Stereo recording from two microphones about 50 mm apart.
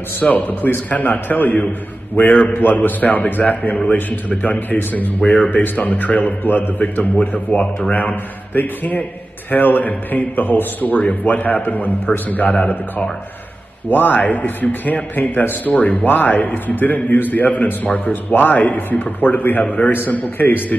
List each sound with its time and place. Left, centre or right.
0.2 s a man's voice: left
6.8 s a man's voice: left
13.8 s speech: left